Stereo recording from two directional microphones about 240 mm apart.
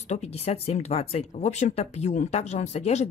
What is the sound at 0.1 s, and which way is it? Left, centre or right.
Speech, left.